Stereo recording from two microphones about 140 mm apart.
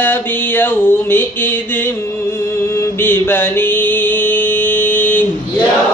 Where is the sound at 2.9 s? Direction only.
15° left (ahead or behind).